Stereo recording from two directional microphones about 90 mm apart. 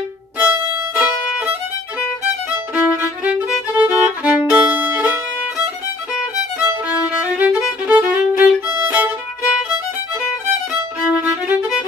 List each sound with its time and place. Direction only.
0.4 s violin: 20° right (ahead or behind)
2.5 s violin: 20° right (ahead or behind)
7.3 s violin: 10° right (ahead or behind)
11.1 s music: 15° right (ahead or behind)